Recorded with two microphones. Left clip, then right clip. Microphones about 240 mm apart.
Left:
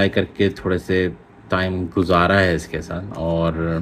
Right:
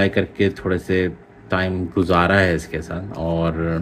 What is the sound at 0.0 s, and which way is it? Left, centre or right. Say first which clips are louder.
Speech: even; centre.